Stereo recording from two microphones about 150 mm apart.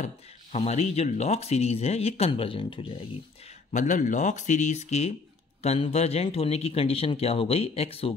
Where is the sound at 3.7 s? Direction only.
55° left (ahead or behind).